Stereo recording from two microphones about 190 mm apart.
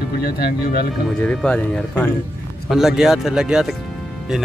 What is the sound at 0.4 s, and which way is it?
Speech, 55° left (ahead or behind).